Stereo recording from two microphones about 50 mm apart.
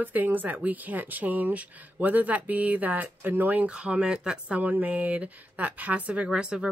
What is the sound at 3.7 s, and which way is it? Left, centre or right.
Speech, right.